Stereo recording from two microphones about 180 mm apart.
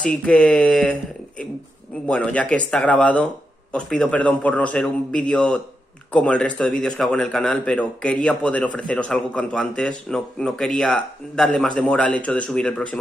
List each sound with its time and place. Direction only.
0.0 s a man's voice: 5° left (ahead or behind)
2.0 s a man's voice: 5° left (ahead or behind)